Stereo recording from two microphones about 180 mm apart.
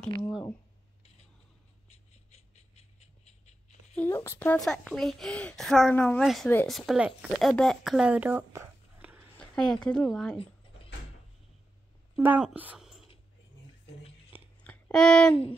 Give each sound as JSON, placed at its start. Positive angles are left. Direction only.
{"t": 0.3, "sound": "a woman's voice", "side_deg": 0}
{"t": 1.9, "sound": "a sound", "side_deg": 35}
{"t": 3.9, "sound": "a woman's voice", "side_deg": 10}
{"t": 9.4, "sound": "a woman's voice", "side_deg": 5}
{"t": 12.2, "sound": "speech", "side_deg": -10}
{"t": 14.6, "sound": "music", "side_deg": 5}